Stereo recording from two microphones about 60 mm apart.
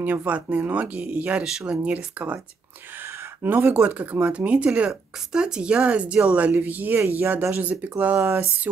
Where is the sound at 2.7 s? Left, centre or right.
Right.